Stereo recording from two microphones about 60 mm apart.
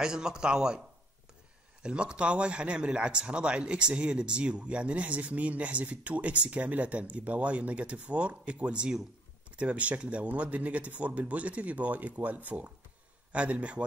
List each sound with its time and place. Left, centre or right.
0.0 s a man's voice: centre